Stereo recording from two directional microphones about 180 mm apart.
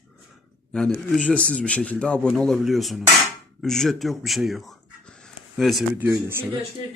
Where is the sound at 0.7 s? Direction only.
5° left (ahead or behind).